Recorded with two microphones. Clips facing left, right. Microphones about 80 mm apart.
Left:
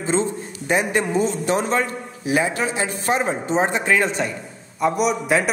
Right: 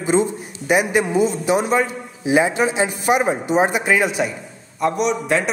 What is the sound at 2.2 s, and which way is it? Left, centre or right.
A man's voice, right.